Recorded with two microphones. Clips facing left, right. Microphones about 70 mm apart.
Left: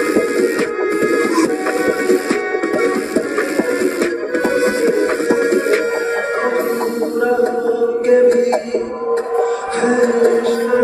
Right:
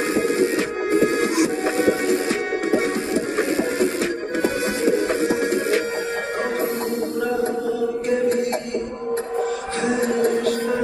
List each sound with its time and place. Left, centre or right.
0.9 s music: left
4.4 s music: left
8.1 s music: left